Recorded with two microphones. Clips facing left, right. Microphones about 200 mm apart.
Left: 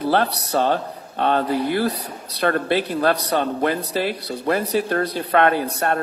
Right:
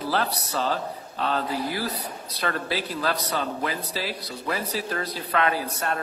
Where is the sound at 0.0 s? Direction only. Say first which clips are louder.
Left 7 dB; 60° left (ahead or behind).